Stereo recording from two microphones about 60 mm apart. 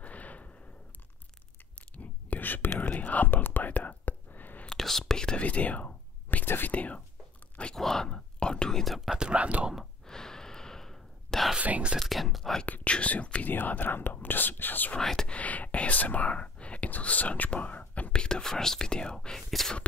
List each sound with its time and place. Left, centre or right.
0.0 s a sound: left
2.2 s whispering: left
4.7 s whispering: centre
5.4 s whispering: left
6.7 s speech: left
7.7 s whispering: centre
9.1 s speech: centre
10.0 s sigh: centre
11.5 s whispering: right
12.0 s speech: centre
12.6 s speech: left
15.0 s speech: centre
15.3 s whispering: left
18.1 s speech: centre